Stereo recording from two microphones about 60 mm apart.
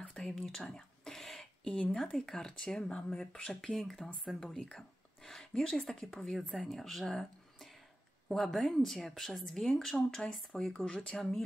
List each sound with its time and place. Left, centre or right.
0.2 s speech: centre
0.6 s a sound: centre
1.7 s speech: centre
2.0 s speech: centre